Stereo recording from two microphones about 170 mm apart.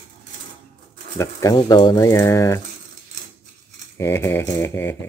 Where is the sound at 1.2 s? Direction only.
15° left (ahead or behind).